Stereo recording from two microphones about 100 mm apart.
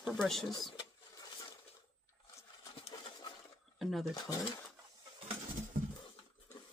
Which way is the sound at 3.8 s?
Centre (ahead or behind).